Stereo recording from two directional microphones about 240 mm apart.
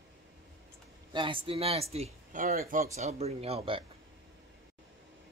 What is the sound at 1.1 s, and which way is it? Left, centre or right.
Speech, right.